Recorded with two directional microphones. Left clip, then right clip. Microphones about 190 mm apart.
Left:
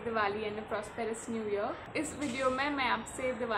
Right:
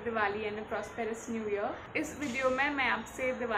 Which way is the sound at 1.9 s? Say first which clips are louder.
Right 1 dB; 10° left (ahead or behind).